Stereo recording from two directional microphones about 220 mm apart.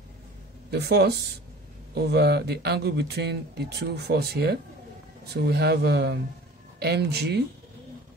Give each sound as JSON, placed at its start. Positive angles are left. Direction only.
{"t": 0.7, "sound": "speech", "side_deg": -45}